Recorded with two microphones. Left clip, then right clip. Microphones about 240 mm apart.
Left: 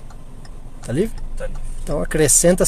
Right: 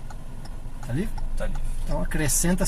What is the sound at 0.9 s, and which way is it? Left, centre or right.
Speech, left.